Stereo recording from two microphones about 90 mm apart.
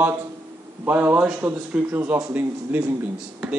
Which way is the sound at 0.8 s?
20° right (ahead or behind).